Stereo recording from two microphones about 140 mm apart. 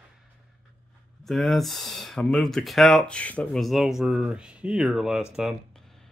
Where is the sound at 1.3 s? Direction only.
Centre (ahead or behind).